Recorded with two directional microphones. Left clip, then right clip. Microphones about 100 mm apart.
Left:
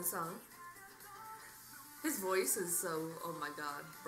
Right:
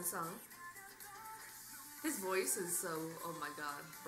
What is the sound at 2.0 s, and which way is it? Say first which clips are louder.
Speech: left 3 dB; 5° left (ahead or behind).